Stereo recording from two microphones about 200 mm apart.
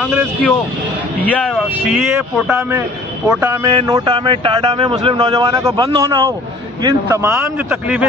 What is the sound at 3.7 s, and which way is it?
A man's voice, 20° right (ahead or behind).